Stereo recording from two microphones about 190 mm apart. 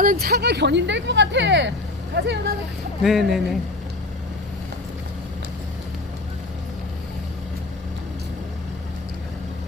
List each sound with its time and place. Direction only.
0.0 s speech: 50° right (ahead or behind)
3.0 s speech: centre (ahead or behind)